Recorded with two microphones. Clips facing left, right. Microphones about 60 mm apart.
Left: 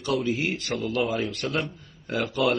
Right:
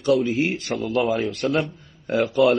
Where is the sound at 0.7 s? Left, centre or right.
Centre.